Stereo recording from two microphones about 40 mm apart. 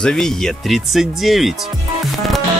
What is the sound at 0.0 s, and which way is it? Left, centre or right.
Speech, centre.